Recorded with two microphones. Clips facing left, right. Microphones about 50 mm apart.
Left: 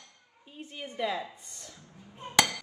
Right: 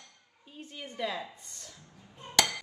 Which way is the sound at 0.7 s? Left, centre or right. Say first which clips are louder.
Left 3 dB; centre.